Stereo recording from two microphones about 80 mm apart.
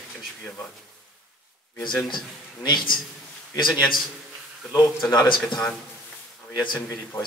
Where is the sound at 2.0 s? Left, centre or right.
Left.